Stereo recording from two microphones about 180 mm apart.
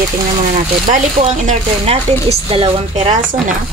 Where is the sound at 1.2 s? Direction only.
40° right (ahead or behind).